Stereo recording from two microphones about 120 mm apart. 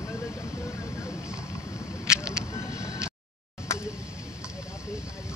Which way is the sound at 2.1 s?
5° right (ahead or behind).